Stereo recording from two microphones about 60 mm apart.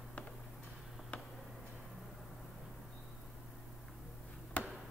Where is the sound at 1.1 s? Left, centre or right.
Left.